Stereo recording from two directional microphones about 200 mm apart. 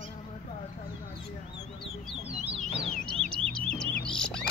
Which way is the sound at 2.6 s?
35° left (ahead or behind).